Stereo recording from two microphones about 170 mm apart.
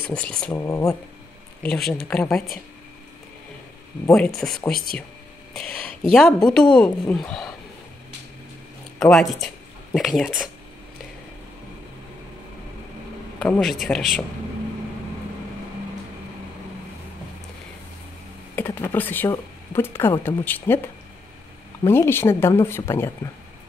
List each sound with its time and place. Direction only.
0.1 s speech: 5° left (ahead or behind)
0.5 s speech: 20° left (ahead or behind)
1.6 s speech: 5° left (ahead or behind)
4.1 s speech: centre (ahead or behind)
9.0 s speech: centre (ahead or behind)
13.4 s speech: 5° left (ahead or behind)
18.6 s speech: 15° left (ahead or behind)
21.8 s speech: 15° left (ahead or behind)